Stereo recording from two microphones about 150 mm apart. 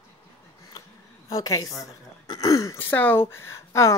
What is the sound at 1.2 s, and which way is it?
A woman's voice, 25° left (ahead or behind).